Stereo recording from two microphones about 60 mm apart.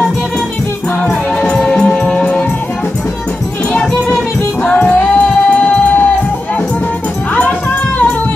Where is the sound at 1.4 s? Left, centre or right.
Centre.